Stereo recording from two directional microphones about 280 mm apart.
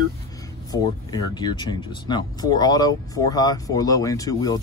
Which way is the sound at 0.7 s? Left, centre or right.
Centre.